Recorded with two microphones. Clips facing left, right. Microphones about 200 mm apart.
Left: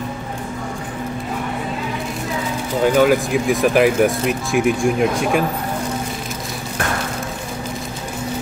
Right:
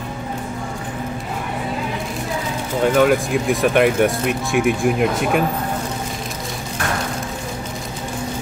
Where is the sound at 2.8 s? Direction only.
Centre (ahead or behind).